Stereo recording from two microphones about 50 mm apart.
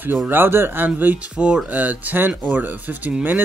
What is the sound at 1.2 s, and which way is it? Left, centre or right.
A man's voice, right.